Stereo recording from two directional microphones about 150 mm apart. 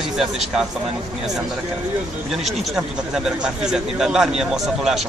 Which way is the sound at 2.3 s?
Centre (ahead or behind).